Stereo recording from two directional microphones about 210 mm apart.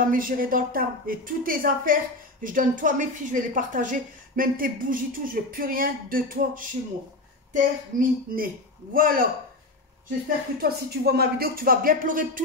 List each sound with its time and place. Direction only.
0.0 s a woman's voice: 40° right (ahead or behind)
10.6 s speech: 45° right (ahead or behind)